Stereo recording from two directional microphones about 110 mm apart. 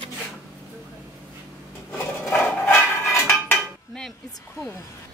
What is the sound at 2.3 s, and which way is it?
Dishes, 20° left (ahead or behind).